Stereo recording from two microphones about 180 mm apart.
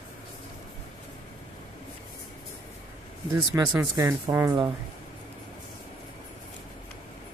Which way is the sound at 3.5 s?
20° right (ahead or behind).